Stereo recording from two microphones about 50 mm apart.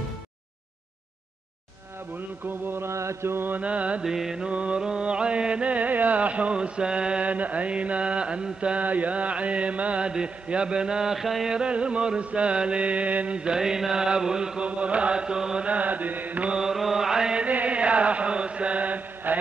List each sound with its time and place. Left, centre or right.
2.1 s a sound: right
2.9 s mantra: right
3.4 s mantra: right
4.0 s mantra: centre
4.5 s music: right
8.5 s mantra: right; by 11.4 s centre
11.4 s mantra: centre
13.4 s mantra: centre
14.7 s mantra: right
15.6 s mantra: right
16.5 s mantra: centre
17.5 s chant: right